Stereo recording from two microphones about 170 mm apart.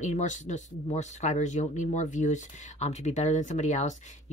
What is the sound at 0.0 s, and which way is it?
Speech, 45° left (ahead or behind).